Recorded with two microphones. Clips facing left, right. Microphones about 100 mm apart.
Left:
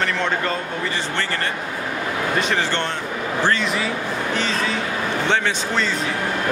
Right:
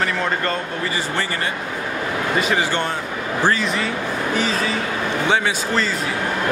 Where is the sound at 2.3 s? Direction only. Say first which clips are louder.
Right 3 dB; 5° right (ahead or behind).